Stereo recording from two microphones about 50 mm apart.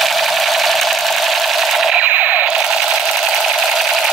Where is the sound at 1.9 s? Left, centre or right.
Right.